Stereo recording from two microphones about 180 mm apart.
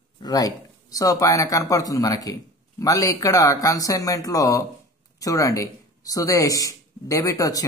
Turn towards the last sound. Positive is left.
turn(degrees=20)  # may be behind; listen again after turning